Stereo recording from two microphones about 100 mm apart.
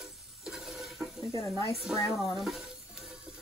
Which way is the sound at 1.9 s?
30° left (ahead or behind).